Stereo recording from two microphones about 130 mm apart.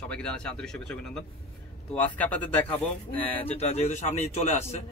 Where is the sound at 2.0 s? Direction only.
10° left (ahead or behind).